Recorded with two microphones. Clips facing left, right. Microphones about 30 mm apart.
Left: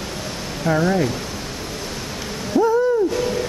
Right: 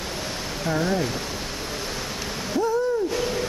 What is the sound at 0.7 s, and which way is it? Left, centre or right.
Speech, left.